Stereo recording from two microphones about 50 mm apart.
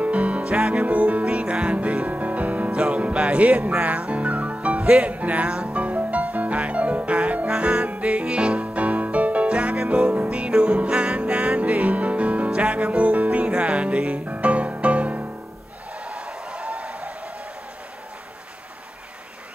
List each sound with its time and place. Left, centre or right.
0.0 s music: right
0.8 s music: right
16.1 s a sound: centre